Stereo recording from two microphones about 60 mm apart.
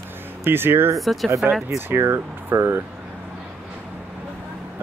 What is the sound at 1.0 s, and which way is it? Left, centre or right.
Speech, centre.